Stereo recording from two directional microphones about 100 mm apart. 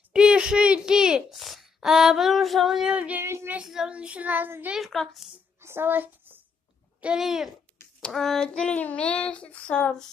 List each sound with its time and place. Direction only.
0.1 s a sound: 10° right (ahead or behind)
3.3 s child singing: 25° right (ahead or behind)
3.5 s a child's voice: 5° right (ahead or behind)
4.7 s speech: centre (ahead or behind)
5.6 s a sound: 25° right (ahead or behind)
7.0 s speech: 5° right (ahead or behind)
8.0 s child singing: 5° left (ahead or behind)